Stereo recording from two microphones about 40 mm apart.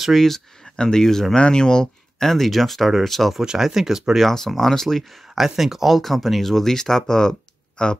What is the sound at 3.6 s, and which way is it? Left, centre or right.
Speech, centre.